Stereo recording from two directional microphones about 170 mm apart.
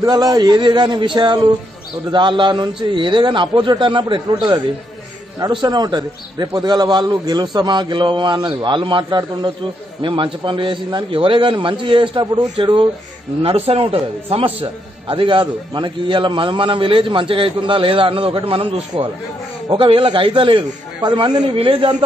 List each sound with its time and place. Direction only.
0.0 s a man's voice: 25° right (ahead or behind)